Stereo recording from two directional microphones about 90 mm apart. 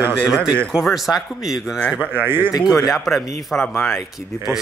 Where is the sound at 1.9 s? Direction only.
20° right (ahead or behind).